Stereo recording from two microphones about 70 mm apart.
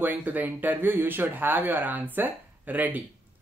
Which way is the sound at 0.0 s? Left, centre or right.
Right.